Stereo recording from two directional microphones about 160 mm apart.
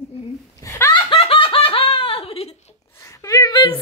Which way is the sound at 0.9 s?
35° left (ahead or behind).